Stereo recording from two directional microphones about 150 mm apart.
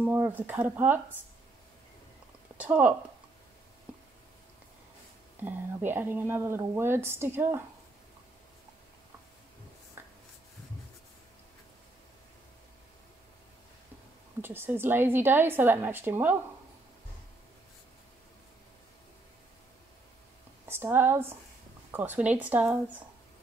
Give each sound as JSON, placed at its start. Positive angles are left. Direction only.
{"t": 0.0, "sound": "a woman's voice", "side_deg": -10}
{"t": 2.5, "sound": "speech", "side_deg": -10}
{"t": 5.4, "sound": "a woman's voice", "side_deg": -10}
{"t": 10.0, "sound": "writing", "side_deg": -15}
{"t": 14.4, "sound": "a woman's voice", "side_deg": -15}
{"t": 20.6, "sound": "a woman's voice", "side_deg": -15}